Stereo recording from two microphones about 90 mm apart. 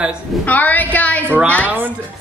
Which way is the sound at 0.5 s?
20° left (ahead or behind).